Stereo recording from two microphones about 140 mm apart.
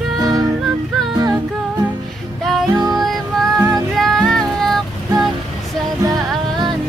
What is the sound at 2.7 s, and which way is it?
Music, 25° right (ahead or behind).